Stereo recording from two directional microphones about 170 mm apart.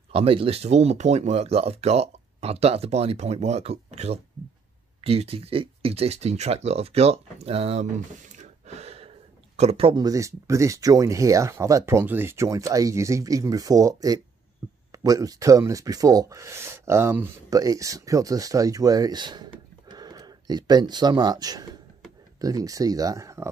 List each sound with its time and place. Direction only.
0.1 s speech: 35° right (ahead or behind)
8.6 s a sound: 40° right (ahead or behind)
9.6 s speech: 35° right (ahead or behind); by 23.5 s 15° right (ahead or behind)